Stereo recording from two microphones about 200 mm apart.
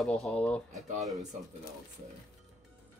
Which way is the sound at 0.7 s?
35° right (ahead or behind).